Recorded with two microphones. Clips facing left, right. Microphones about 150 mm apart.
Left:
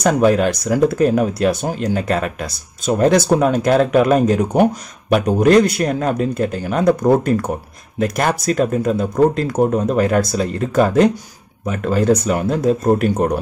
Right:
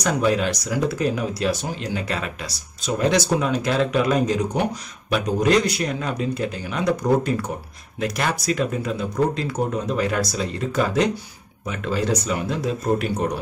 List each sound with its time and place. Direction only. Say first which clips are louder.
0.0 s speech: left 7 dB; 50° left (ahead or behind)